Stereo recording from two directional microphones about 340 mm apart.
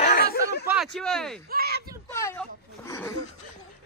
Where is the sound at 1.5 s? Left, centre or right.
Right.